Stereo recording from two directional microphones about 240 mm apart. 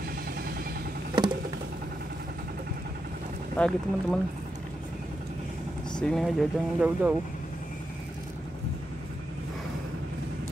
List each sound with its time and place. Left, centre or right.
3.5 s speech: centre
5.9 s speech: centre